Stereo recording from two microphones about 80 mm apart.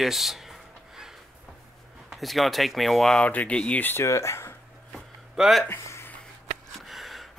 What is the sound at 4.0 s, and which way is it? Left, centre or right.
Speech, left.